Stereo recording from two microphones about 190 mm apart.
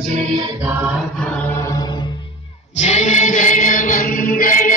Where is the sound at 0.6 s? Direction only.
5° right (ahead or behind).